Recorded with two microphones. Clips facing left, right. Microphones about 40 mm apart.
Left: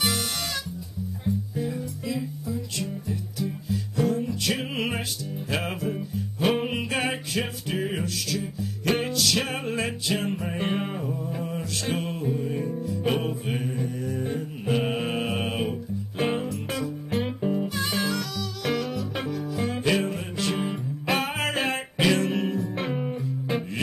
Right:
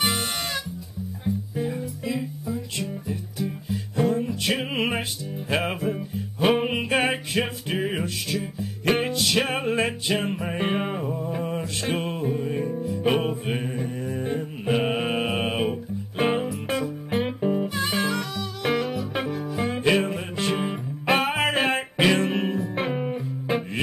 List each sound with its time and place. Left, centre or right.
1.6 s music: centre
3.3 s music: right